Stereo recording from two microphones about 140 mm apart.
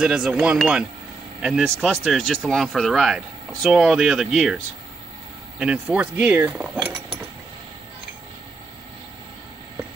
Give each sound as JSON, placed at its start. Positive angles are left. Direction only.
{"t": 0.0, "sound": "speech", "side_deg": -5}
{"t": 5.6, "sound": "cutlery", "side_deg": -10}